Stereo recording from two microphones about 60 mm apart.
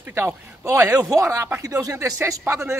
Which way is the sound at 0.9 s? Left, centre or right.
Right.